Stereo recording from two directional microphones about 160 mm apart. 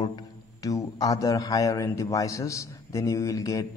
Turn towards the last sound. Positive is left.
turn(degrees=20)  # may be behind; listen again after turning